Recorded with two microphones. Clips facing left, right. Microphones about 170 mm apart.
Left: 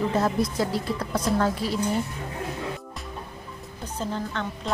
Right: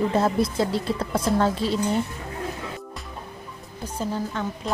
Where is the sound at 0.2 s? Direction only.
25° right (ahead or behind).